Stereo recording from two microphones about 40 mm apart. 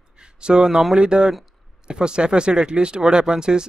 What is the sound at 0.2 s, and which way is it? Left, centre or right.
Speech, right.